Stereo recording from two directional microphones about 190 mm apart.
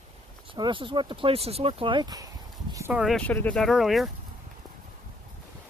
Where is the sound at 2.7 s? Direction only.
10° right (ahead or behind).